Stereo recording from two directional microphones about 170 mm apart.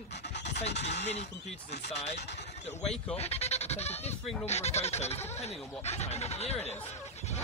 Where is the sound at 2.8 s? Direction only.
5° left (ahead or behind).